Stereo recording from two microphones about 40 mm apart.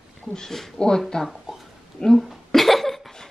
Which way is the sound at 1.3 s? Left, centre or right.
Centre.